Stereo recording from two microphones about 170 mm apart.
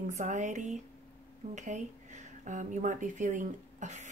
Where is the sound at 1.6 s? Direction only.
45° right (ahead or behind).